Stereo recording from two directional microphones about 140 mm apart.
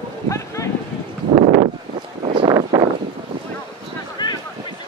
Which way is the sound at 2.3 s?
40° right (ahead or behind).